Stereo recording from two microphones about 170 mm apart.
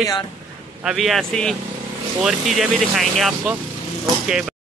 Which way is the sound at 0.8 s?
Centre (ahead or behind).